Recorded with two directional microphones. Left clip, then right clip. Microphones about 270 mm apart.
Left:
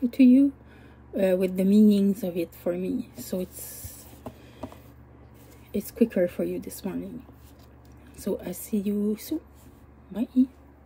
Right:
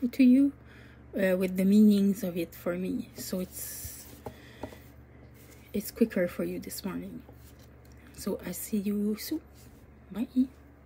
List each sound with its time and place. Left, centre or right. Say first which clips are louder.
0.0 s a woman's voice: left 4 dB; centre
2.8 s speech: left 4 dB; right
5.7 s a woman's voice: left 4 dB; centre
8.2 s a woman's voice: left 4 dB; centre